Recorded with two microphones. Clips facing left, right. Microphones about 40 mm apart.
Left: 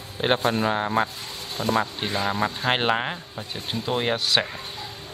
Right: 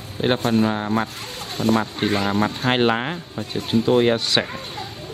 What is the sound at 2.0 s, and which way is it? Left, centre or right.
Speech, right.